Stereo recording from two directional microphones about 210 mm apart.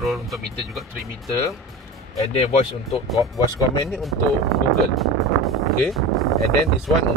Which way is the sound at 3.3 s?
20° left (ahead or behind).